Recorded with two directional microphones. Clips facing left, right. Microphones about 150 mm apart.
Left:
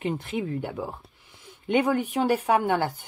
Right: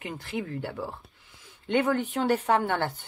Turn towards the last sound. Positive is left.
turn(degrees=10)  # may be behind; listen again after turning